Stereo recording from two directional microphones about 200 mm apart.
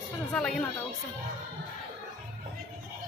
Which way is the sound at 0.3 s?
5° left (ahead or behind).